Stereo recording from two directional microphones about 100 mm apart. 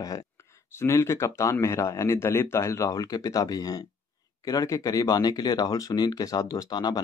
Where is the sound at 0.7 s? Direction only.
30° left (ahead or behind).